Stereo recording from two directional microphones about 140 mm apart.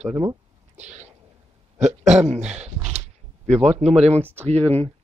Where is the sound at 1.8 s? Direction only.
55° right (ahead or behind).